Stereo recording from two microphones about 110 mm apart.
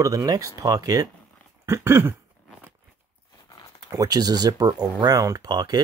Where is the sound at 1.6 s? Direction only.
25° right (ahead or behind).